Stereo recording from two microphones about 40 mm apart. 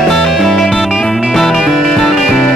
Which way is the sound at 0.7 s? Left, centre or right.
Centre.